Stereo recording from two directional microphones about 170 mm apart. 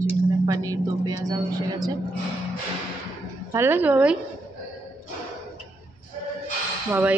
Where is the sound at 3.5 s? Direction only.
15° right (ahead or behind).